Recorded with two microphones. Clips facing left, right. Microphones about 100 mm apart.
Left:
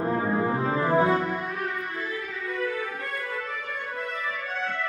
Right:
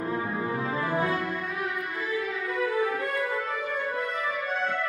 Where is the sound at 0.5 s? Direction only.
35° left (ahead or behind).